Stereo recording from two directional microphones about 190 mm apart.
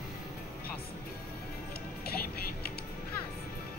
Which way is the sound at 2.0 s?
55° left (ahead or behind).